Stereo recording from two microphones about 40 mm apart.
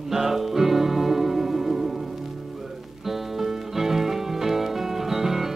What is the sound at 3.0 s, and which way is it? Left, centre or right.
Music, centre.